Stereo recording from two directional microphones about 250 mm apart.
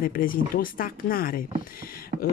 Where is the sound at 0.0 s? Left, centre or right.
Left.